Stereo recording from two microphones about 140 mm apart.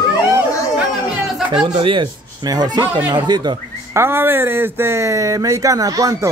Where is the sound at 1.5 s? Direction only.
35° right (ahead or behind).